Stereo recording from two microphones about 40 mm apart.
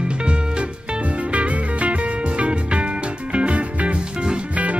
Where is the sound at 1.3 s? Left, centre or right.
Right.